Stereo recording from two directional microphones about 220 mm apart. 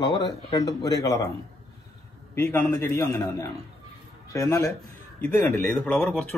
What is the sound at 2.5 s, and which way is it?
Speech, 10° left (ahead or behind).